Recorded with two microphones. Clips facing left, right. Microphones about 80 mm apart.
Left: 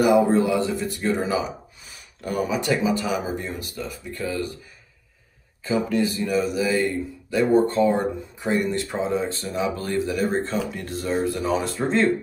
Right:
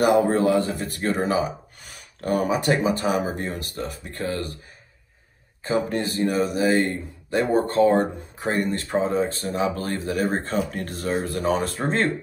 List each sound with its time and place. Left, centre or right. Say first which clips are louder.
0.0 s speech: left 1 dB; right
5.6 s speech: left 1 dB; right